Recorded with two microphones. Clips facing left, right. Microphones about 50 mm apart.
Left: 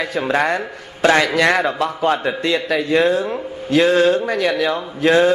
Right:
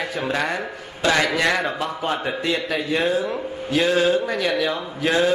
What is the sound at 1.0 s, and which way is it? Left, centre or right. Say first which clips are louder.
Speech: left 5 dB; left.